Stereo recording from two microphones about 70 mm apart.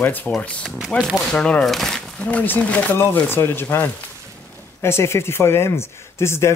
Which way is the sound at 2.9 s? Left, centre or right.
Left.